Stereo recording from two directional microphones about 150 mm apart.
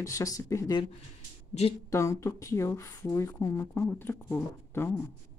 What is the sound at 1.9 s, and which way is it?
Speech, 20° left (ahead or behind).